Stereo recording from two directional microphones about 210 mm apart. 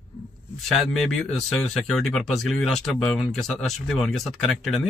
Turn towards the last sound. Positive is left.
turn(degrees=0)  # may be behind; listen again after turning